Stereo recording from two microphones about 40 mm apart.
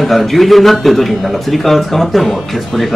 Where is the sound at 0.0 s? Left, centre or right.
Centre.